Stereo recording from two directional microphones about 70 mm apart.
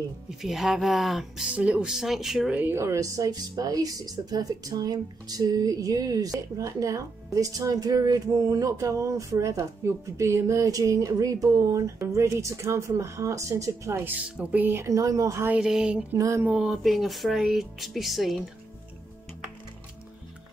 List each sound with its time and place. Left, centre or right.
0.3 s speech: centre
1.5 s speech: centre
2.7 s speech: right
14.2 s speech: right
14.8 s speech: right
15.6 s speech: centre
16.2 s speech: right
16.5 s speech: centre
16.8 s speech: centre